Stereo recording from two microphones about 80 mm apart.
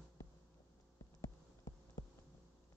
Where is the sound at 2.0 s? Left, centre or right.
Left.